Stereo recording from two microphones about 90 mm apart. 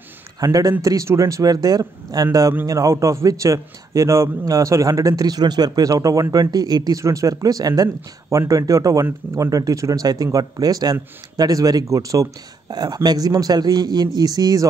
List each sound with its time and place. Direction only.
0.4 s a man's voice: 40° right (ahead or behind)